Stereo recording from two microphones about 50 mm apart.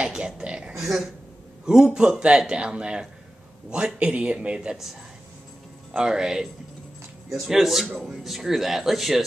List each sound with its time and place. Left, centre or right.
0.0 s speech: centre
0.7 s speech: centre
2.0 s speech: centre
4.6 s speech: centre
5.9 s speech: centre